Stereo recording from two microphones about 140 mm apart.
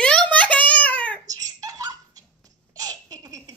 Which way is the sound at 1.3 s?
25° right (ahead or behind).